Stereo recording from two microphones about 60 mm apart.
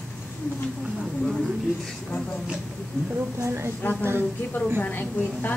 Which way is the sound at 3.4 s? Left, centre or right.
Right.